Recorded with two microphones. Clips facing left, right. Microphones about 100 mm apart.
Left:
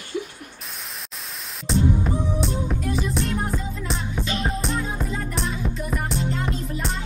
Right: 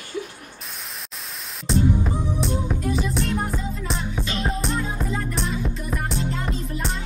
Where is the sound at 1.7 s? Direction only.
Centre (ahead or behind).